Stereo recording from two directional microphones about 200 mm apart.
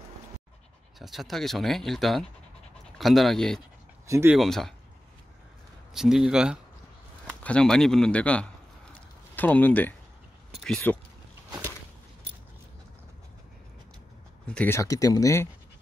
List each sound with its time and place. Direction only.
0.9 s speech: centre (ahead or behind)
4.1 s speech: 10° right (ahead or behind)
4.4 s speech: centre (ahead or behind)
5.9 s speech: centre (ahead or behind)
14.5 s speech: 10° left (ahead or behind)